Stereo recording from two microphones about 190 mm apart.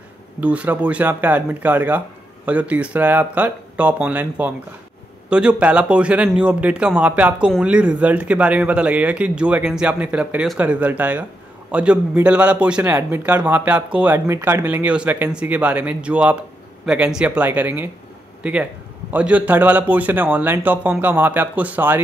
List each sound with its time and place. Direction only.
0.4 s speech: 5° right (ahead or behind)